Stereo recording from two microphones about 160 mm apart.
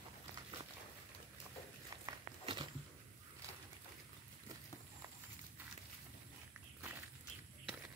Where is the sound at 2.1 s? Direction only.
30° right (ahead or behind).